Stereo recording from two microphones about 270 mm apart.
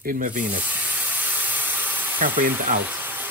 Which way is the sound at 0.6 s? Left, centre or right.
Centre.